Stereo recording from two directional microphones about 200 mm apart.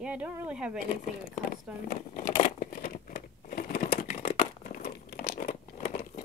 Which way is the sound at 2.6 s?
45° left (ahead or behind).